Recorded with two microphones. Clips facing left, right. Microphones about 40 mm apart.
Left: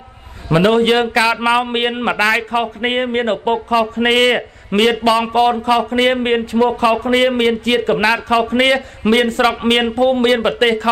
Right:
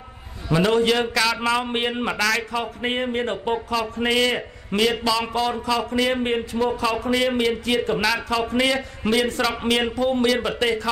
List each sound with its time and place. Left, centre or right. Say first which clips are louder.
0.5 s a man's voice: left 6 dB; left
1.7 s speech: left 6 dB; left
2.0 s speech: left 7 dB; left
3.5 s a man's voice: left 8 dB; left
3.9 s a man's voice: left 5 dB; left
8.0 s a man's voice: left 8 dB; left